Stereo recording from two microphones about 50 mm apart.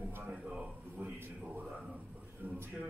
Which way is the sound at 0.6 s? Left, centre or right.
Right.